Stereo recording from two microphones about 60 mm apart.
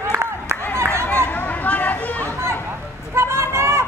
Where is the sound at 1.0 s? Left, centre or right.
Left.